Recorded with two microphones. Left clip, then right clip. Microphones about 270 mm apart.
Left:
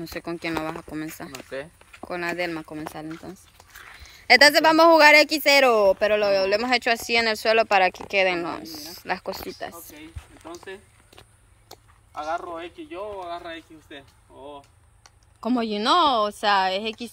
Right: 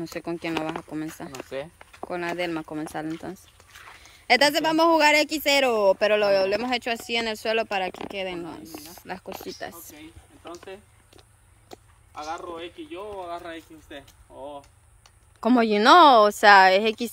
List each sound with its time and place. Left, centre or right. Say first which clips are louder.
0.0 s a man's voice: even; centre
1.3 s speech: right 1 dB; right
2.0 s a man's voice: left 1 dB; centre
12.1 s a woman's voice: left 4 dB; centre